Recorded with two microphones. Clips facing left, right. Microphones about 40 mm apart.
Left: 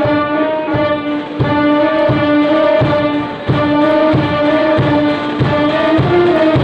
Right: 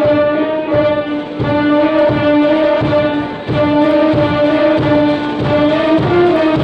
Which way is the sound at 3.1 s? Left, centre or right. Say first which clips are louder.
Even; left.